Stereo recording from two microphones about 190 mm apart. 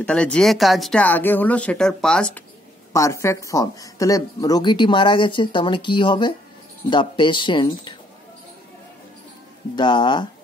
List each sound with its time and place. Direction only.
0.0 s speech: 5° left (ahead or behind)
2.9 s speech: 15° left (ahead or behind)
9.8 s speech: 25° left (ahead or behind)